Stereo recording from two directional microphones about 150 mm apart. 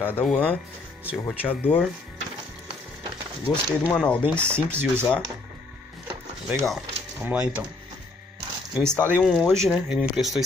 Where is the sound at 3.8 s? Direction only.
5° left (ahead or behind).